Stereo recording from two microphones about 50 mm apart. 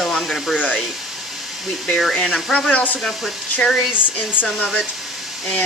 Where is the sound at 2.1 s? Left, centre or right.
Centre.